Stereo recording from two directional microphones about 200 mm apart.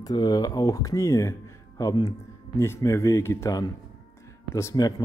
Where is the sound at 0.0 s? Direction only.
20° left (ahead or behind).